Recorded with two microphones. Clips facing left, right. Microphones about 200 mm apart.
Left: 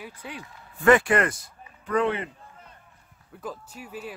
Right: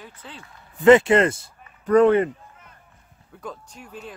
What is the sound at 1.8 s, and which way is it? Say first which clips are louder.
Speech: right 10 dB; 45° right (ahead or behind).